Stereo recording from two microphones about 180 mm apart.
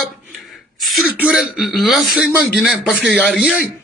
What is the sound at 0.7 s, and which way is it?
A man's voice, 5° right (ahead or behind).